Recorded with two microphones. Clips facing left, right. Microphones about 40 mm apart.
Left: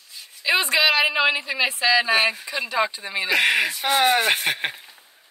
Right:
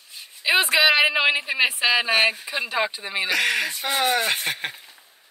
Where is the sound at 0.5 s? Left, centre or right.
Centre; by 2.0 s right.